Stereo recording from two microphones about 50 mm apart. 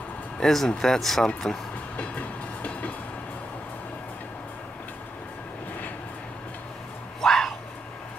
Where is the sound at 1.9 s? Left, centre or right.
Left.